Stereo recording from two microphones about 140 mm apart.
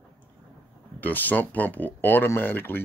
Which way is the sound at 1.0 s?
15° left (ahead or behind).